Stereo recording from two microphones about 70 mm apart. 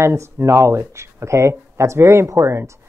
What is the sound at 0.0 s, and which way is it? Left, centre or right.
A woman's voice, right.